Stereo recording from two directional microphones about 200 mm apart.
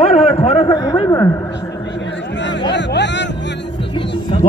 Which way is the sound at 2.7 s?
60° left (ahead or behind).